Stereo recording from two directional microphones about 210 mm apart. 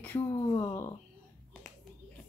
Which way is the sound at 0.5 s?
15° left (ahead or behind).